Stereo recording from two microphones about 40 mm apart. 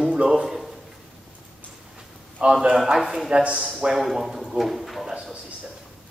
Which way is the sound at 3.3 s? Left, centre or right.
Right.